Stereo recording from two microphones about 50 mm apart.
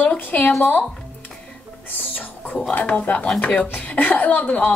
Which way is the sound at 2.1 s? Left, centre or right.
Left.